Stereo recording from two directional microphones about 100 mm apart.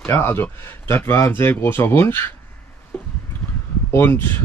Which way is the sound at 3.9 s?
25° left (ahead or behind).